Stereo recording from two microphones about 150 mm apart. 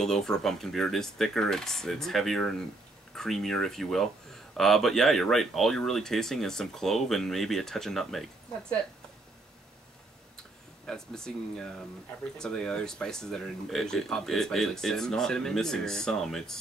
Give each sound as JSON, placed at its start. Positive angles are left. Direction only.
{"t": 0.0, "sound": "speech", "side_deg": 5}
{"t": 10.9, "sound": "speech", "side_deg": 5}